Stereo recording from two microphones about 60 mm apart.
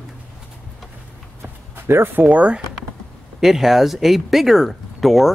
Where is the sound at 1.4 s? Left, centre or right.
Right.